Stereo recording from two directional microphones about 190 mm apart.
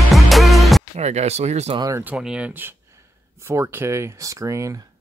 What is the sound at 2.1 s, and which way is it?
Speech, 5° right (ahead or behind).